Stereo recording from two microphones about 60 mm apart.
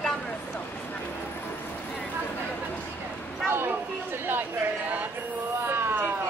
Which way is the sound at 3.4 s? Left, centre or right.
Right.